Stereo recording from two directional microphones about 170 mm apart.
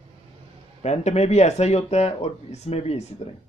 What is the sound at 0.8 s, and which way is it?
Speech, 40° left (ahead or behind).